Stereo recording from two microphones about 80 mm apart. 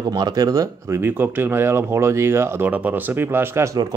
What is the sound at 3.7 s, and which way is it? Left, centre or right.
Speech, right.